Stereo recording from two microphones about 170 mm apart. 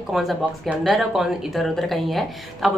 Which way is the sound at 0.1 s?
Centre (ahead or behind).